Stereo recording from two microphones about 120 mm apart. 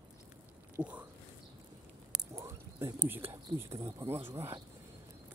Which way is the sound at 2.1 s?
25° right (ahead or behind).